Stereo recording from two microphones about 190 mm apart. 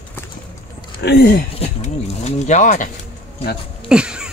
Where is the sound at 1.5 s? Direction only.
35° left (ahead or behind).